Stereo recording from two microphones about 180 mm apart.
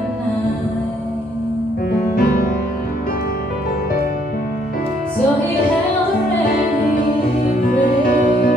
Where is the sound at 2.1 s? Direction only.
55° left (ahead or behind).